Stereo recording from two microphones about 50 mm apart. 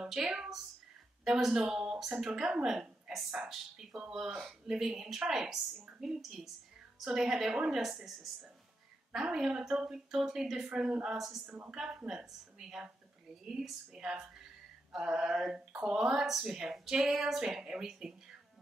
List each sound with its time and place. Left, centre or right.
0.0 s a woman's voice: centre
2.1 s a woman's voice: centre
11.1 s speech: centre
11.4 s a woman's voice: right
11.7 s speech: centre